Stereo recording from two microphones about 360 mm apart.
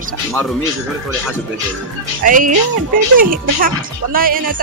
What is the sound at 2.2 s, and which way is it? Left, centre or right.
Speech, right.